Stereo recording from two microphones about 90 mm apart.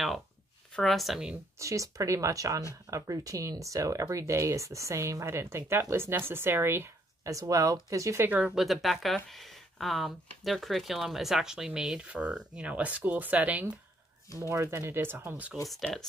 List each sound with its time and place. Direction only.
0.7 s speech: centre (ahead or behind)
1.6 s speech: 35° right (ahead or behind)
7.2 s speech: 40° right (ahead or behind)
8.2 s speech: 20° right (ahead or behind)
8.5 s speech: 5° right (ahead or behind)
14.5 s speech: 30° right (ahead or behind)
15.7 s speech: centre (ahead or behind)